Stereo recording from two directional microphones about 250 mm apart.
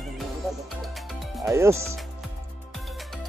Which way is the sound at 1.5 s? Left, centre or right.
Centre.